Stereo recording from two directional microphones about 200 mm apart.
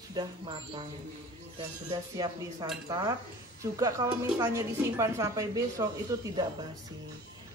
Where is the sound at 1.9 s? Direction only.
20° right (ahead or behind).